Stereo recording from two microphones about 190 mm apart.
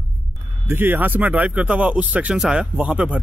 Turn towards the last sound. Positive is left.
turn(degrees=-5)  # may be behind; listen again after turning